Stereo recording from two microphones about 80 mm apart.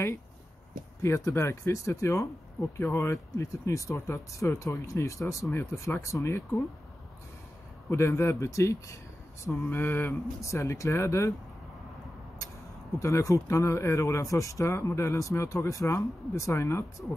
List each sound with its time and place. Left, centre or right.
1.0 s speech: left
5.5 s mantra: left
5.9 s speech: left
7.9 s speech: left
9.5 s mantra: left
10.4 s speech: left
13.0 s speech: left